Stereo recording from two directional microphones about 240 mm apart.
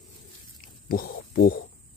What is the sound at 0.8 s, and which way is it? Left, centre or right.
Speech, left.